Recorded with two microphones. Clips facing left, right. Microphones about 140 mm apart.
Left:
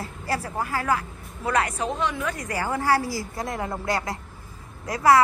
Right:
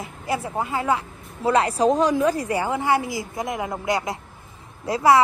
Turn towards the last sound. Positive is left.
turn(degrees=-25)  # may be behind; listen again after turning